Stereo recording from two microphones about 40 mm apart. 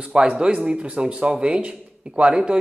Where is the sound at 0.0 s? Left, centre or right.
Right.